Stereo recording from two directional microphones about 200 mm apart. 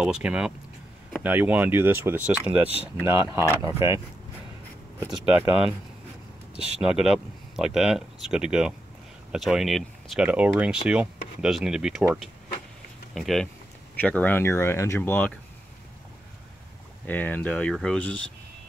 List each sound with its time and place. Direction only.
0.0 s speech: 5° right (ahead or behind)
5.1 s speech: 5° right (ahead or behind)
6.8 s speech: 5° right (ahead or behind)
13.1 s speech: centre (ahead or behind)
17.0 s speech: 10° left (ahead or behind)